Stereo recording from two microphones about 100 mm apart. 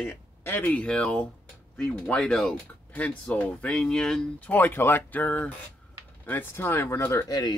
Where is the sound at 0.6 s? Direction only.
10° left (ahead or behind).